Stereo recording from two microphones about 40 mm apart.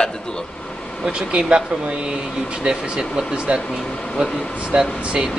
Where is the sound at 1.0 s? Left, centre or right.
Right.